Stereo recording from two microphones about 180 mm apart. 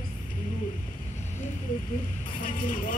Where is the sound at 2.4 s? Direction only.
50° left (ahead or behind).